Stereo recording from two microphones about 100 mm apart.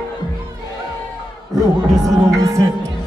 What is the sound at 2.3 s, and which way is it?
Music, 30° right (ahead or behind).